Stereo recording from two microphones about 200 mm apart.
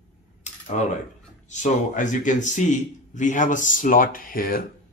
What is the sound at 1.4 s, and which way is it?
A man's voice, 35° left (ahead or behind).